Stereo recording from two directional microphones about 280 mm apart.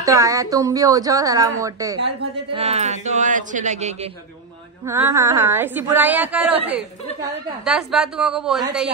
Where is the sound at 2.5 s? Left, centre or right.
Right.